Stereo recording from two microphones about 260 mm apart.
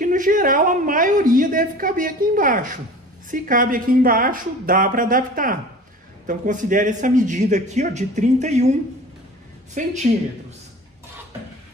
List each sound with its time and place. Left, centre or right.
0.0 s a woman's voice: right
9.8 s a man's voice: right